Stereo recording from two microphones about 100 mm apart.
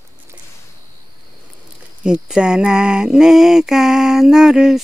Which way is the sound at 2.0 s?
5° right (ahead or behind).